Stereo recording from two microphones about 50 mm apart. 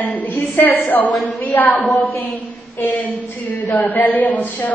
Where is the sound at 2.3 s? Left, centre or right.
Left.